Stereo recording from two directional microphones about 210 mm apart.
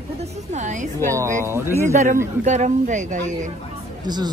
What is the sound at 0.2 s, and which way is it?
Music, 35° right (ahead or behind).